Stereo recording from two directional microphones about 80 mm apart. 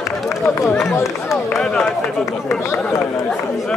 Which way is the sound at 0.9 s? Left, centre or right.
Left.